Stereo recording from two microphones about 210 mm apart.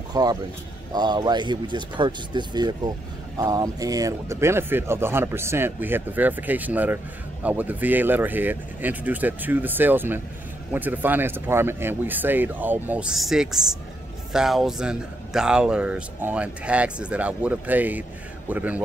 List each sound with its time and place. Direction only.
0.1 s a man's voice: 20° right (ahead or behind)